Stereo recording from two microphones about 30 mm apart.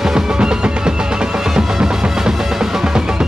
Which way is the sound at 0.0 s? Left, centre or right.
Centre.